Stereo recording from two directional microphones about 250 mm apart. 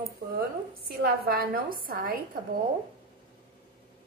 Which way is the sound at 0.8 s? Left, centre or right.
Right.